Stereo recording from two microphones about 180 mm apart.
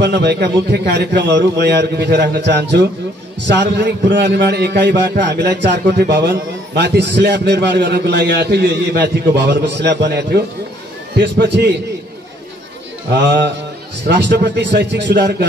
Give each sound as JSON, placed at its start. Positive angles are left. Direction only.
{"t": 0.0, "sound": "a man's voice", "side_deg": -65}
{"t": 14.0, "sound": "a man's voice", "side_deg": -70}